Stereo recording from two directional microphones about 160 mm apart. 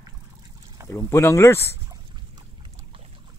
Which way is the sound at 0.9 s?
15° left (ahead or behind).